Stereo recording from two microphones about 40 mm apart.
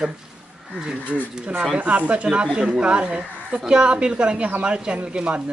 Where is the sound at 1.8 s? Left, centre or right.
Right.